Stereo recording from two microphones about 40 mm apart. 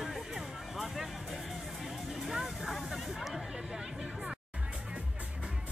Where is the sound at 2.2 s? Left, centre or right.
Centre.